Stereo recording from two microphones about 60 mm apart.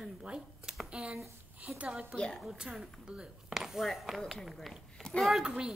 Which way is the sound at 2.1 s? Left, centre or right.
Centre.